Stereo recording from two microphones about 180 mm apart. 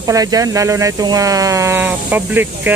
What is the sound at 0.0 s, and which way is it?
Speech, 20° right (ahead or behind).